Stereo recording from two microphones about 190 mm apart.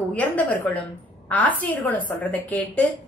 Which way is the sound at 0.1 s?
5° left (ahead or behind).